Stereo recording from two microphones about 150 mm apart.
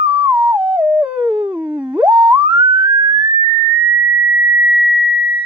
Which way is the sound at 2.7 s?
30° right (ahead or behind).